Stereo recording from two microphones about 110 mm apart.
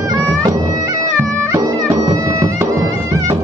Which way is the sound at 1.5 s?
35° right (ahead or behind).